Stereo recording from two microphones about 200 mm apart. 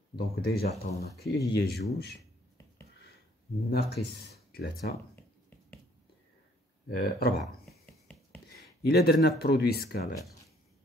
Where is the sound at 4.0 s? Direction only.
55° left (ahead or behind).